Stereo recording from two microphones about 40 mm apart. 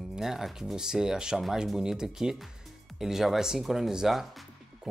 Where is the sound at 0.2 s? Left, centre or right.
Centre.